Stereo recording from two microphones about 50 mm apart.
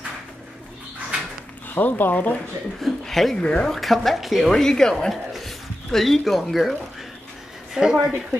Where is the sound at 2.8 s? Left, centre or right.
Centre.